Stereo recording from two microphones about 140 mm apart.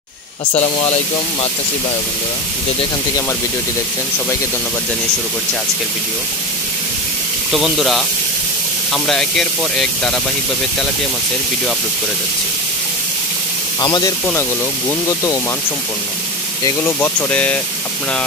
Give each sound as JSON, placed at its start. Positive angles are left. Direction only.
{"t": 0.5, "sound": "speech", "side_deg": 50}
{"t": 7.5, "sound": "speech", "side_deg": 0}
{"t": 13.7, "sound": "speech", "side_deg": 30}
{"t": 16.8, "sound": "speech", "side_deg": 10}